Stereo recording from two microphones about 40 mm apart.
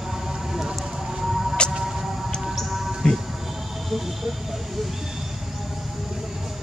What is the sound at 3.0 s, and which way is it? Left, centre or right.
Music, centre.